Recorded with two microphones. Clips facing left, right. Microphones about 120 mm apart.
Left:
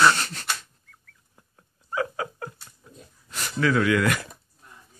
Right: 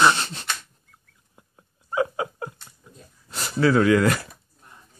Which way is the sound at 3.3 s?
30° right (ahead or behind).